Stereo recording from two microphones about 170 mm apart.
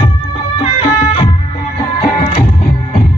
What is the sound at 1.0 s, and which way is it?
Music, 35° left (ahead or behind).